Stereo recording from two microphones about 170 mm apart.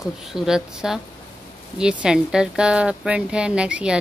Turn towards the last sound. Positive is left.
turn(degrees=-5)  # may be behind; listen again after turning